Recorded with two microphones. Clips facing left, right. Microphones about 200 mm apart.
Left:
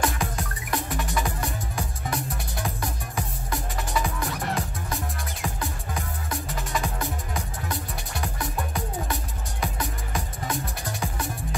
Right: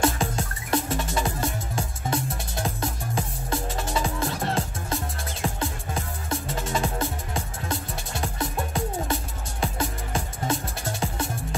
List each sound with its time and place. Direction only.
0.0 s music: 25° right (ahead or behind)